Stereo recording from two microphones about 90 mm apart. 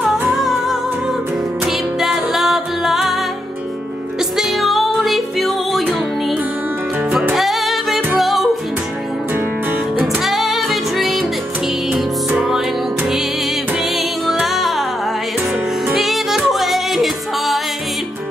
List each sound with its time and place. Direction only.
0.3 s music: 5° right (ahead or behind)
9.3 s music: 20° right (ahead or behind)
10.1 s music: centre (ahead or behind)
15.9 s music: 5° right (ahead or behind)